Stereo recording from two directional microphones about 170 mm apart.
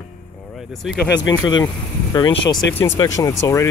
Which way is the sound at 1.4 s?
25° left (ahead or behind).